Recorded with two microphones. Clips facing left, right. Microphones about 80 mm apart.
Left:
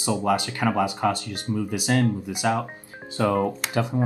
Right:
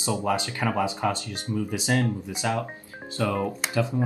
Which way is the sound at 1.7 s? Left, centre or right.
Right.